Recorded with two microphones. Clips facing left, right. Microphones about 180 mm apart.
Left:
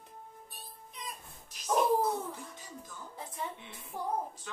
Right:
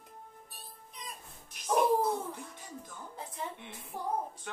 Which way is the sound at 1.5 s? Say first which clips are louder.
Right 1 dB; 55° right (ahead or behind).